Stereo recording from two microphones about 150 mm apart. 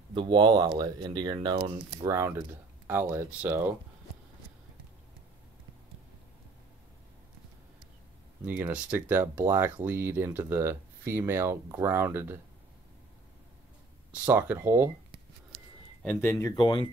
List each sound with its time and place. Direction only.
0.1 s speech: 35° right (ahead or behind); by 3.7 s 15° right (ahead or behind)
8.5 s speech: 10° right (ahead or behind)
14.1 s speech: 10° right (ahead or behind)
15.5 s a sound: centre (ahead or behind)
16.2 s speech: 20° left (ahead or behind)